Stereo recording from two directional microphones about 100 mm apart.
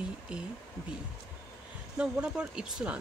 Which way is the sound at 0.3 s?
10° right (ahead or behind).